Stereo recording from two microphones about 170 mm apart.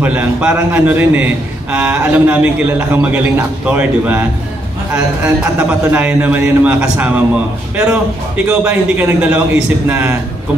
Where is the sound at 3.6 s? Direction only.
10° right (ahead or behind).